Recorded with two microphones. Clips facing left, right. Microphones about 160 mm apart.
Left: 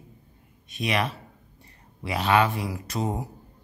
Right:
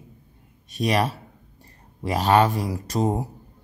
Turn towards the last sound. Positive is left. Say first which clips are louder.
# right 5 dB
turn(degrees=-35)  # may be behind; listen again after turning